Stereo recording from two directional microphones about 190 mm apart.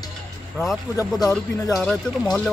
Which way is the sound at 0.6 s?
15° left (ahead or behind).